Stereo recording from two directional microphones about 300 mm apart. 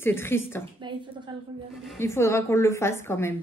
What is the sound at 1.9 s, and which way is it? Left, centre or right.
Speech, centre.